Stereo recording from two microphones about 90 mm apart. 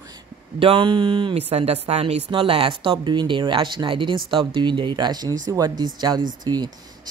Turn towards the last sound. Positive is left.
turn(degrees=-50)  # may be behind; listen again after turning